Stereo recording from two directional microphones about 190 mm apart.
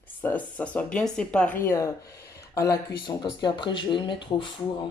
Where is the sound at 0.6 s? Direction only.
5° left (ahead or behind).